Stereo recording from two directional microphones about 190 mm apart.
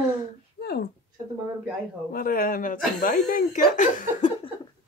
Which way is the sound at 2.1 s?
50° left (ahead or behind).